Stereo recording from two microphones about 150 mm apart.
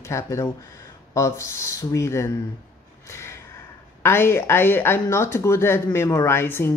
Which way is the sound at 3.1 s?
20° left (ahead or behind).